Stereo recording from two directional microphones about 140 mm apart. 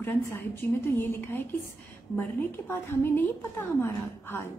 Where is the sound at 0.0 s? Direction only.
15° left (ahead or behind).